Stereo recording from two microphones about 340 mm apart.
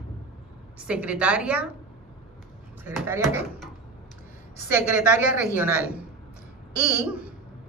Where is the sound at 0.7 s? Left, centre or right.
Centre.